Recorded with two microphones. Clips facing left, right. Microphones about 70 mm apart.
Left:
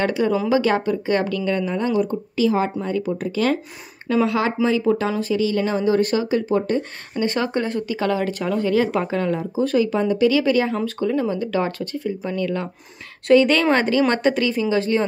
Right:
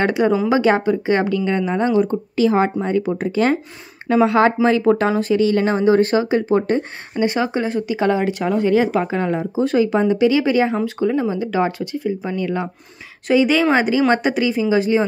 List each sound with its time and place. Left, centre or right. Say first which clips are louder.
0.0 s speech: right 3 dB; right
4.6 s speech: right 4 dB; right
7.2 s speech: right 2 dB; centre
7.9 s speech: right 5 dB; right